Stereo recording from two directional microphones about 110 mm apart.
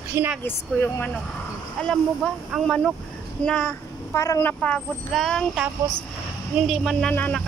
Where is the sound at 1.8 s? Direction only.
10° left (ahead or behind).